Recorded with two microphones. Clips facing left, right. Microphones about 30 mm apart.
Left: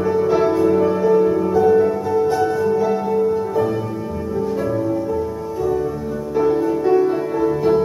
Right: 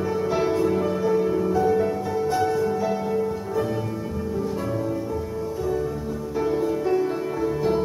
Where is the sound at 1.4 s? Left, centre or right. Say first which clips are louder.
Left 6 dB; centre.